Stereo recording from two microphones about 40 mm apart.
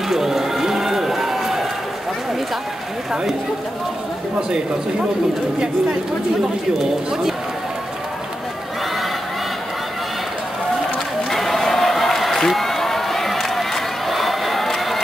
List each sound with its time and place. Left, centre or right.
0.1 s run: centre
4.4 s speech: centre
6.4 s speech: centre
11.2 s a sound: centre